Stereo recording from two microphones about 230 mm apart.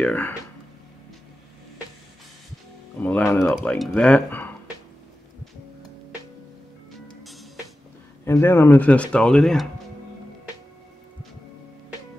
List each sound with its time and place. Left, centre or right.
0.0 s speech: centre
3.0 s speech: centre
8.3 s speech: centre